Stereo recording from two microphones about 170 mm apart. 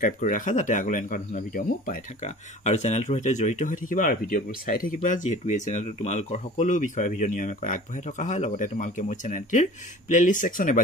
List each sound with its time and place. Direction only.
0.0 s speech: 50° left (ahead or behind)